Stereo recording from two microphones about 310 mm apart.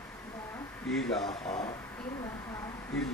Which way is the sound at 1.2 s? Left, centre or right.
Centre.